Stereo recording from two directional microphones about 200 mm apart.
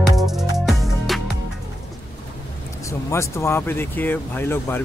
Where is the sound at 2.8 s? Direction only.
15° left (ahead or behind).